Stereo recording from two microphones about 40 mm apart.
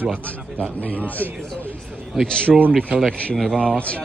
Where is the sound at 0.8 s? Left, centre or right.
Left.